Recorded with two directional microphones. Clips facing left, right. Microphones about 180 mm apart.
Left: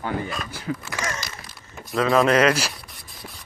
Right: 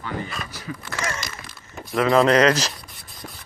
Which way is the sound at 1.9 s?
20° right (ahead or behind).